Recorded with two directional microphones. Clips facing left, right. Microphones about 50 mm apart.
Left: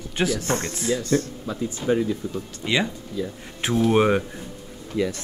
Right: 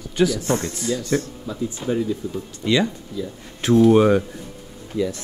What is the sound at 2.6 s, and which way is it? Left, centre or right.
Speech, centre.